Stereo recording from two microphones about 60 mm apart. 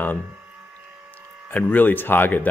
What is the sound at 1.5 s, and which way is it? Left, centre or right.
Speech, left.